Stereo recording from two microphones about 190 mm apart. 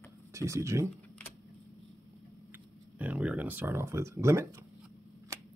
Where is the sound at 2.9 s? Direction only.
10° right (ahead or behind).